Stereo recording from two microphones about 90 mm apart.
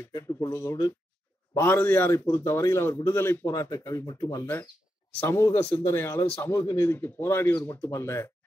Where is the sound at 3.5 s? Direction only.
40° left (ahead or behind).